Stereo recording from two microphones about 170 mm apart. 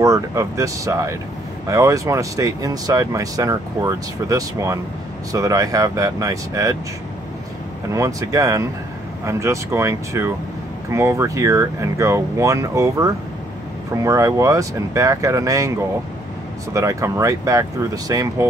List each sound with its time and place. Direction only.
0.0 s speech: 20° right (ahead or behind)
7.9 s speech: 20° right (ahead or behind)
16.7 s speech: 20° right (ahead or behind)